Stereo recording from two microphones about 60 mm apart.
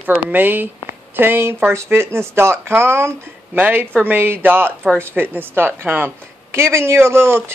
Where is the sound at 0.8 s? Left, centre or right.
Right.